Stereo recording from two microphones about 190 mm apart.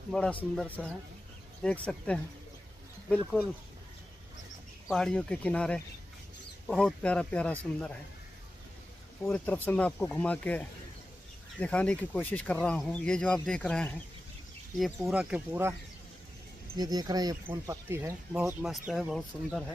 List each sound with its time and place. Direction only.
0.1 s speech: 5° left (ahead or behind)
4.8 s speech: centre (ahead or behind)
9.2 s speech: 10° left (ahead or behind)
11.6 s speech: 5° left (ahead or behind)
16.7 s speech: 20° right (ahead or behind)
18.4 s speech: centre (ahead or behind)